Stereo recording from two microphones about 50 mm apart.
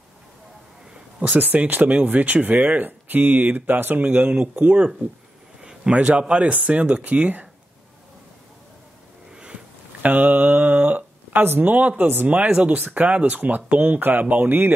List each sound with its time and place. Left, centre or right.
1.3 s speech: right
5.6 s a sound: centre
5.9 s speech: right
10.0 s a sound: right
11.4 s speech: right
12.4 s speech: right
12.7 s speech: right